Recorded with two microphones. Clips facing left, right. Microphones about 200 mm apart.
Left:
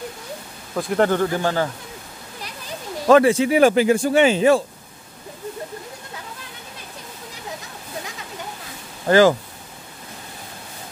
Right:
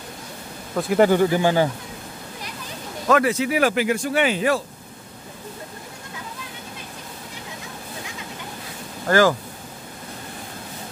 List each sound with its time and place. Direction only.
0.7 s speech: 5° right (ahead or behind)
3.1 s speech: 30° left (ahead or behind)
9.0 s speech: 20° left (ahead or behind)